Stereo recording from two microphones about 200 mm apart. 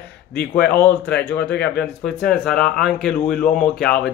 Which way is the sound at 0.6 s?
5° left (ahead or behind).